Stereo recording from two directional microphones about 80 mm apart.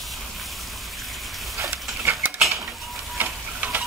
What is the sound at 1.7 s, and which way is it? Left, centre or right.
Stir, right.